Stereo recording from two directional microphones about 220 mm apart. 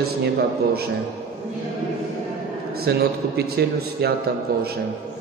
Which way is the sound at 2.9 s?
45° right (ahead or behind).